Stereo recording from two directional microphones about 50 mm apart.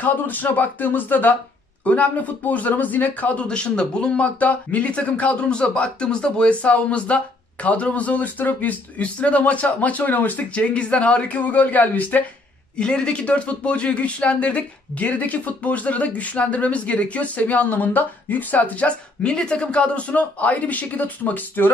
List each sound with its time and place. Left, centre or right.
0.0 s speech: left
3.4 s speech: centre
12.7 s speech: centre; by 21.6 s left